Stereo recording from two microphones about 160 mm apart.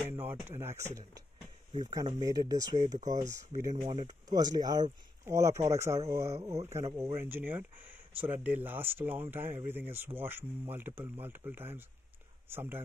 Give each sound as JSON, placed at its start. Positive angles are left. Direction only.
{"t": 0.1, "sound": "speech", "side_deg": -15}
{"t": 1.8, "sound": "speech", "side_deg": -25}
{"t": 2.8, "sound": "speech", "side_deg": -50}
{"t": 3.2, "sound": "speech", "side_deg": -20}